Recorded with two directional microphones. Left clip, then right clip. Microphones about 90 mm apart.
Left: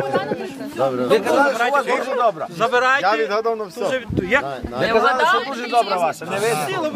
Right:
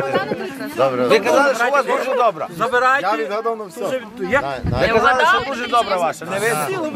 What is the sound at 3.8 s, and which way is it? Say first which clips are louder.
Speech: left 1 dB; 20° left (ahead or behind).